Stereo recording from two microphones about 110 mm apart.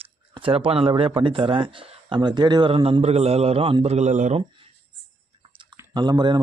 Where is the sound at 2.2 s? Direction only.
40° right (ahead or behind).